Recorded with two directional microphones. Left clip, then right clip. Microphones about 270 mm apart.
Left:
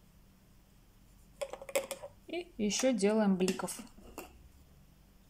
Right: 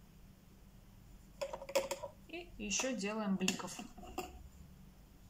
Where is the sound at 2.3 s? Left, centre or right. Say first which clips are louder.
Left 6 dB; left.